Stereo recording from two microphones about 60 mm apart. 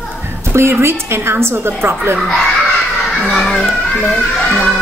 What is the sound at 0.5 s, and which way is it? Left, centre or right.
A woman's voice, right.